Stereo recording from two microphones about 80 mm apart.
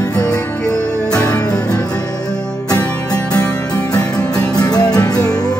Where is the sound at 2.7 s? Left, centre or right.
Left.